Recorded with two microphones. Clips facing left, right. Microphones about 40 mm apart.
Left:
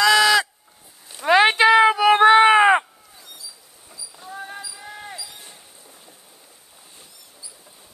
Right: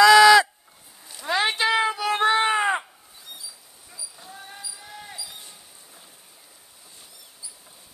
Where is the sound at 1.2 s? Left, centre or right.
Left.